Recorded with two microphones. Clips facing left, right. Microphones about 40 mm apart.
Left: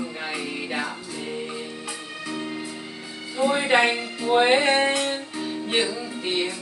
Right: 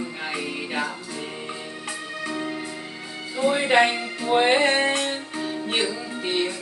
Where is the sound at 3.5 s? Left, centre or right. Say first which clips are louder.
Right 1 dB; centre.